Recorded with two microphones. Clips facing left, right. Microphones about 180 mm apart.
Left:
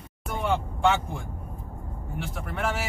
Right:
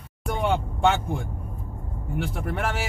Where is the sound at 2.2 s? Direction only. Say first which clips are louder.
Right 1 dB; 55° right (ahead or behind).